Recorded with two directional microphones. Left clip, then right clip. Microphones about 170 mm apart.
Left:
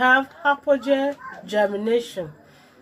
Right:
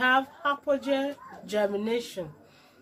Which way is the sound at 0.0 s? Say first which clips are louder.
Left 6 dB; 10° left (ahead or behind).